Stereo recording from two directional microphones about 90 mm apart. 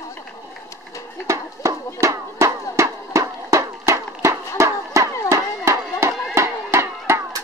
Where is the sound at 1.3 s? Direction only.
35° right (ahead or behind).